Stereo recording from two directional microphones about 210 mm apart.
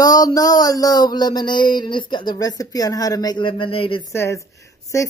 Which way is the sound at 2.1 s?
20° left (ahead or behind).